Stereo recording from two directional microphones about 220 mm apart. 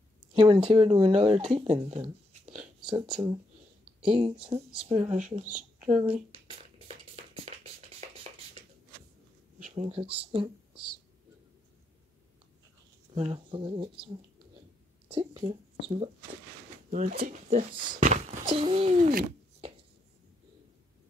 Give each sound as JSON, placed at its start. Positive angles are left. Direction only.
{"t": 0.3, "sound": "a sound", "side_deg": -25}
{"t": 0.7, "sound": "speech", "side_deg": -25}
{"t": 7.4, "sound": "music", "side_deg": -25}
{"t": 9.6, "sound": "speech", "side_deg": -30}
{"t": 13.1, "sound": "speech", "side_deg": -25}
{"t": 16.9, "sound": "speech", "side_deg": -40}